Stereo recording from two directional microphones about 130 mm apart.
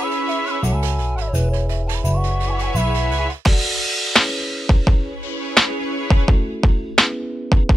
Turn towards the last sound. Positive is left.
turn(degrees=0)  # may be behind; listen again after turning